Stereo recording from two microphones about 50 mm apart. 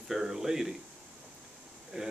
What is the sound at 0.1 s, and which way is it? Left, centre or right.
Speech, centre.